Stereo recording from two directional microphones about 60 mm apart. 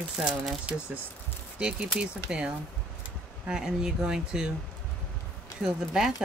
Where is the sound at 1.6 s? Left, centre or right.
Centre.